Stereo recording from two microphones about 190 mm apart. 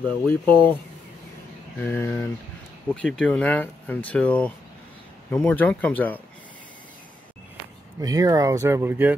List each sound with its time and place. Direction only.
0.5 s speech: 25° right (ahead or behind)
1.8 s speech: 10° left (ahead or behind)
8.0 s speech: 20° right (ahead or behind)